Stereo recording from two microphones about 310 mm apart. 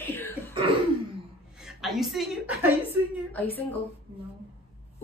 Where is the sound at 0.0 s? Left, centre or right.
Centre.